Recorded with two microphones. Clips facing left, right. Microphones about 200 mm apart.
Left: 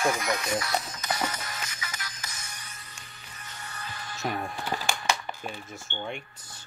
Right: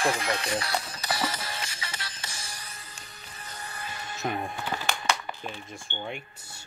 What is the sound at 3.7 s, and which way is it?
Music, 25° right (ahead or behind).